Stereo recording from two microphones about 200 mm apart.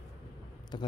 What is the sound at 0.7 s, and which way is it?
Speech, 25° left (ahead or behind).